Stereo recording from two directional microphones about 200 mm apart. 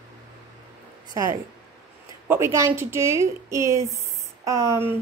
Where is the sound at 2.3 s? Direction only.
15° right (ahead or behind).